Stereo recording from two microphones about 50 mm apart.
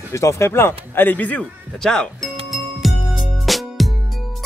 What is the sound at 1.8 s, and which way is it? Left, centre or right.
Speech, centre.